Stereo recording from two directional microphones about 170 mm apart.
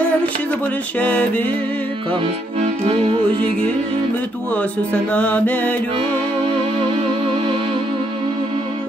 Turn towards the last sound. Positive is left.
turn(degrees=-35)  # may be behind; listen again after turning